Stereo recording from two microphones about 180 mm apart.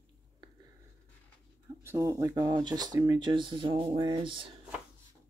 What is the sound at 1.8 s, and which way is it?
Speech, 15° right (ahead or behind).